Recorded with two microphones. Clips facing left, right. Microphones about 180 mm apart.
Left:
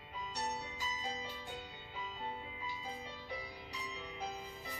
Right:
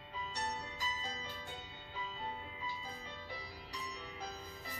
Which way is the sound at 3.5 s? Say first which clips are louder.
Even; centre (ahead or behind).